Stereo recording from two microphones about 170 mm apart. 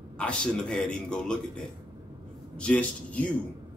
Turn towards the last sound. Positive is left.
turn(degrees=5)  # may be behind; listen again after turning